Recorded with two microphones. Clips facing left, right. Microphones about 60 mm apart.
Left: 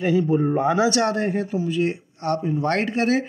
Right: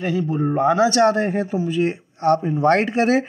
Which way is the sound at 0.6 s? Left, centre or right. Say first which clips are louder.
Right 3 dB; centre.